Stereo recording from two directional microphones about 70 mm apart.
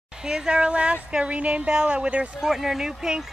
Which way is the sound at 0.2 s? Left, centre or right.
Centre.